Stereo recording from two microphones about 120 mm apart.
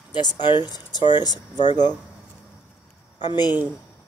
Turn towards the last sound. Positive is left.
turn(degrees=35)  # may be behind; listen again after turning